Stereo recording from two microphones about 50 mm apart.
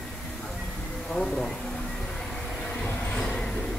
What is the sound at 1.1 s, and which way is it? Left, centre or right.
Speech, centre.